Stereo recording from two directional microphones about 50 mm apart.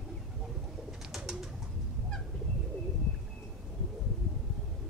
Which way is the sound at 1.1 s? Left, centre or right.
Centre.